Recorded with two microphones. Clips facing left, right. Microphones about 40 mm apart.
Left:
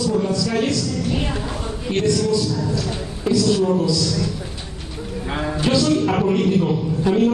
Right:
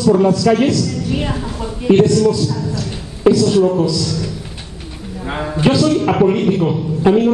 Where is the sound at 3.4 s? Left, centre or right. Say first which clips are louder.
Right 5 dB; right.